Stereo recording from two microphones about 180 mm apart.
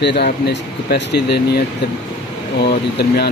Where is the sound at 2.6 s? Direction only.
65° left (ahead or behind).